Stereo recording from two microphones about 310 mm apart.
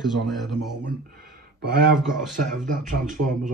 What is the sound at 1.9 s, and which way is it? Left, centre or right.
Speech, centre.